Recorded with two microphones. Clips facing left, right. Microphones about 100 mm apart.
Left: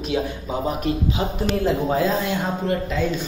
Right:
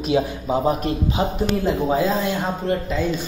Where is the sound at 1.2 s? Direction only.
25° right (ahead or behind).